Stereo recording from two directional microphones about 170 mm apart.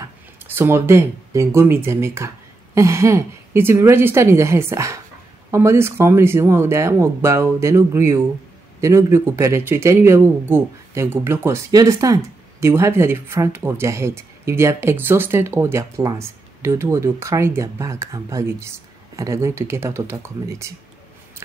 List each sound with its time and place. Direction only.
0.6 s speech: 15° right (ahead or behind)